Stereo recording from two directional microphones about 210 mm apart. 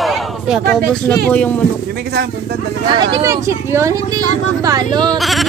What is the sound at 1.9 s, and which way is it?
Speech, 50° right (ahead or behind).